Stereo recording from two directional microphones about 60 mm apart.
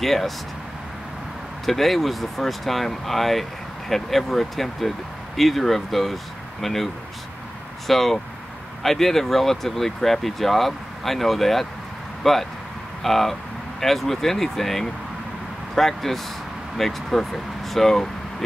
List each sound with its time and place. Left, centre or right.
0.0 s speech: centre
1.7 s speech: centre